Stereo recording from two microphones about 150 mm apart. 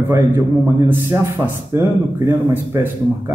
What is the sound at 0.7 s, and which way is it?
A man's voice, 20° right (ahead or behind).